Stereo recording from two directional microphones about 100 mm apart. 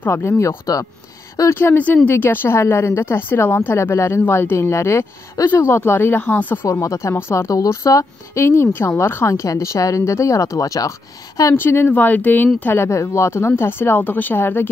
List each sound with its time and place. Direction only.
0.0 s a woman's voice: 20° left (ahead or behind)
1.6 s a woman's voice: 20° left (ahead or behind)
6.7 s a woman's voice: 30° left (ahead or behind)
11.5 s a woman's voice: 20° left (ahead or behind)